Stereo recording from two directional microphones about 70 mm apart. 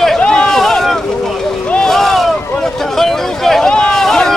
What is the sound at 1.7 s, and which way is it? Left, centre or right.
Vehicle, centre.